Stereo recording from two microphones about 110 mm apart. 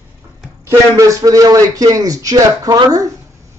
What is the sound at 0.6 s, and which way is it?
Speech, 30° right (ahead or behind).